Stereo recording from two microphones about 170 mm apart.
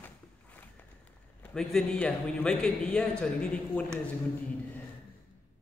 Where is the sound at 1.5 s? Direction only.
5° left (ahead or behind).